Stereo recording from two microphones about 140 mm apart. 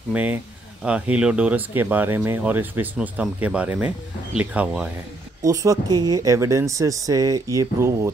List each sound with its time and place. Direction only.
0.1 s speech: 10° right (ahead or behind)
5.4 s speech: 25° right (ahead or behind)